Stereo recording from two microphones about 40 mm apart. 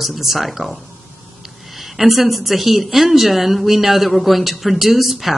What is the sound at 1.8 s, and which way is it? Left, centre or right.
A woman's voice, centre.